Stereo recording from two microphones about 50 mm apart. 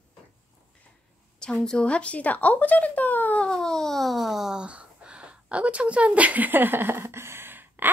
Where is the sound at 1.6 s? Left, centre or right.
Centre; by 3.4 s left.